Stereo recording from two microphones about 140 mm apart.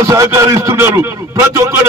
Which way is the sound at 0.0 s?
25° right (ahead or behind).